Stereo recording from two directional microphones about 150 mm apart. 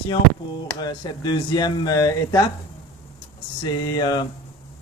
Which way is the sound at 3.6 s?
25° left (ahead or behind).